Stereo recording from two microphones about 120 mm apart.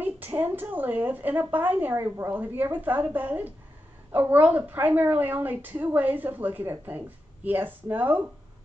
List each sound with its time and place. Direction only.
0.0 s a woman's voice: 15° right (ahead or behind)